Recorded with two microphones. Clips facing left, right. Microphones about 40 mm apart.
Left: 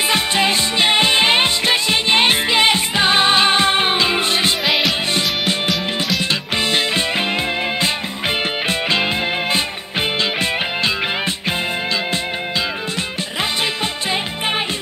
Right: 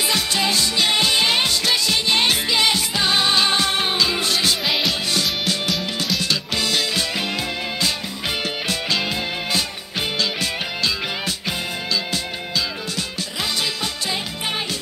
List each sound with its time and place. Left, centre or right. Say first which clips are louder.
0.1 s music: left 5 dB; left
4.6 s music: left 4 dB; centre
6.7 s music: left 5 dB; left